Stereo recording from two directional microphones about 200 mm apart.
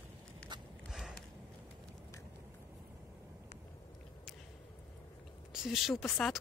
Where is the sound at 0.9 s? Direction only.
Centre (ahead or behind).